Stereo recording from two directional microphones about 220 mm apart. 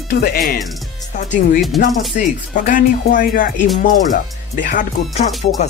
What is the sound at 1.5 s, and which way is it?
Speech, centre (ahead or behind).